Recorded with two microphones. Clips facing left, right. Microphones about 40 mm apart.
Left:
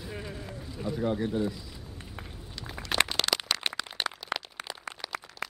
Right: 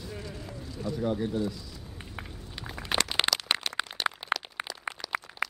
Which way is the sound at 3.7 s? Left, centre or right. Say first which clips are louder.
Right 1 dB; left.